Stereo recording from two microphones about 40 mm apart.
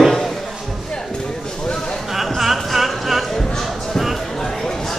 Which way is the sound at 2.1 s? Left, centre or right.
Centre.